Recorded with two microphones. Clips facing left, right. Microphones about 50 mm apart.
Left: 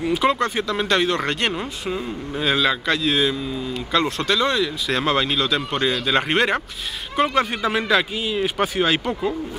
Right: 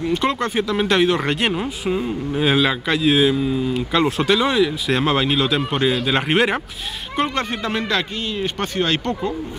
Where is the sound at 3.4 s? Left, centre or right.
Right.